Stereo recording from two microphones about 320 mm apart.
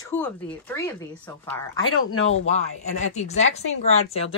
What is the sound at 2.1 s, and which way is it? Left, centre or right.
Speech, left.